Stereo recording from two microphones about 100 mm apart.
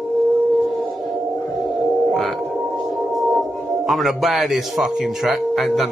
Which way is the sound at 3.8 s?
Centre (ahead or behind).